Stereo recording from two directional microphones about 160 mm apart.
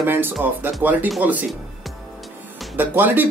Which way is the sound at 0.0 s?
15° right (ahead or behind).